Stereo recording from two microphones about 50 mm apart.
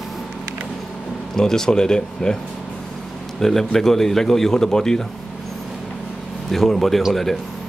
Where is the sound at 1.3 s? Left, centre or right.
Centre.